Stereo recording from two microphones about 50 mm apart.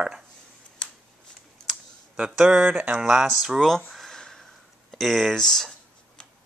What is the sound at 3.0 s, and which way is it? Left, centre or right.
Speech, centre.